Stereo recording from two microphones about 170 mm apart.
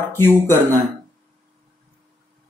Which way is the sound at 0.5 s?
20° right (ahead or behind).